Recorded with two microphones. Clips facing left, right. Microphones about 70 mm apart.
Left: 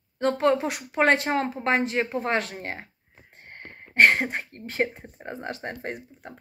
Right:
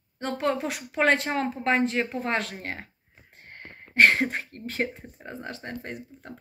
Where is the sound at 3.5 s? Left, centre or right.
Left.